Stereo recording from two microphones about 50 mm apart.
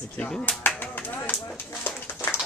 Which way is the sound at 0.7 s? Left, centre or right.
Left.